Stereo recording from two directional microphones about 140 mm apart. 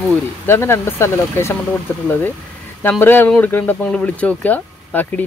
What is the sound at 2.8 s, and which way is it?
Speech, 15° left (ahead or behind).